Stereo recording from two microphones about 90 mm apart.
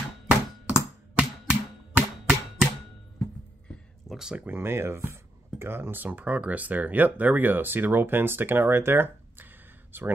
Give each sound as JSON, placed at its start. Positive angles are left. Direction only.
{"t": 0.7, "sound": "a sound", "side_deg": -15}
{"t": 4.2, "sound": "speech", "side_deg": -10}
{"t": 4.5, "sound": "speech", "side_deg": -25}